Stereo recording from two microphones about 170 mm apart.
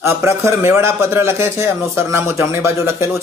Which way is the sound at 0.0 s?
15° right (ahead or behind).